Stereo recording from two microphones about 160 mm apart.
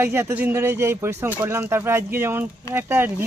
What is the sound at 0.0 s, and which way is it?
Speech, 15° right (ahead or behind).